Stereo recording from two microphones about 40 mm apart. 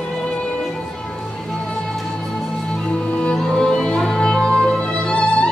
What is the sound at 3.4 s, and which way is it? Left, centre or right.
Music, centre.